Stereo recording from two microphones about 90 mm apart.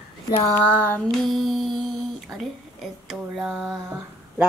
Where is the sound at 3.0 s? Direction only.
5° right (ahead or behind).